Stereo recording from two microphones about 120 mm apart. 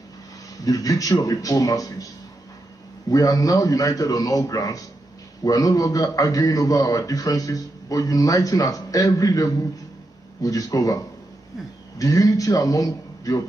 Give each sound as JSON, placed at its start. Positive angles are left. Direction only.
{"t": 0.6, "sound": "a man's voice", "side_deg": 30}
{"t": 3.1, "sound": "a man's voice", "side_deg": 30}